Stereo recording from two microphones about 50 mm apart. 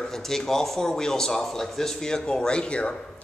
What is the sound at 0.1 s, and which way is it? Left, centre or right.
Speech, centre.